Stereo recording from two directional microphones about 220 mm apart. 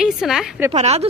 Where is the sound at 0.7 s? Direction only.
30° right (ahead or behind).